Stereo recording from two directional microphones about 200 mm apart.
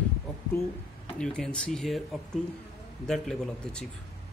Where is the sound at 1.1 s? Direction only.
5° left (ahead or behind).